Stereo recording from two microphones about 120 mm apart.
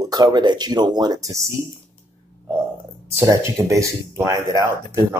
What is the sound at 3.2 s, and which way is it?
Speech, 25° right (ahead or behind).